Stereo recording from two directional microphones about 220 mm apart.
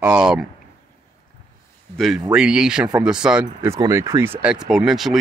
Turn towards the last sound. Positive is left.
turn(degrees=0)  # may be behind; listen again after turning